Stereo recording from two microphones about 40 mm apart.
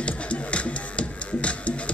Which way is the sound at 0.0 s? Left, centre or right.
Left.